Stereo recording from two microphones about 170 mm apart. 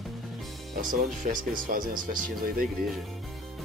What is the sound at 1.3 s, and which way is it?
Speech, 50° right (ahead or behind).